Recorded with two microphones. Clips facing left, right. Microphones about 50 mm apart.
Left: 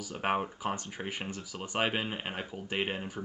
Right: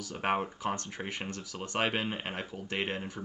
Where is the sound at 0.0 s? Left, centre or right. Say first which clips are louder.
Even; centre.